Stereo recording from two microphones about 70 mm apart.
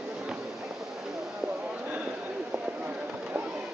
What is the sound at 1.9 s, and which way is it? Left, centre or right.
Run, centre.